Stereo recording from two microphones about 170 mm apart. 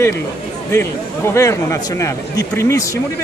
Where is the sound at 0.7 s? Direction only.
15° left (ahead or behind).